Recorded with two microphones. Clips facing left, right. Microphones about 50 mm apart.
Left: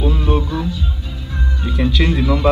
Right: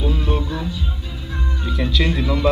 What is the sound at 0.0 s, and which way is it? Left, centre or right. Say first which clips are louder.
Music: left 4 dB; left.